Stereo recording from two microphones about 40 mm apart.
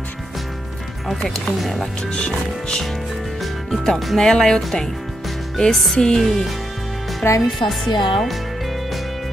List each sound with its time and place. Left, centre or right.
1.2 s speech: centre
1.6 s speech: centre
2.1 s speech: left
3.7 s speech: centre
5.7 s speech: centre
5.9 s speech: centre
7.2 s speech: centre